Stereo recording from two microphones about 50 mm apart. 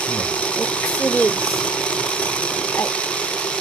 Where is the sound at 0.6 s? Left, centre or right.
Left.